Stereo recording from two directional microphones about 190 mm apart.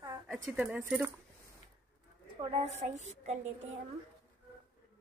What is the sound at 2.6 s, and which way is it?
Speech, 35° right (ahead or behind).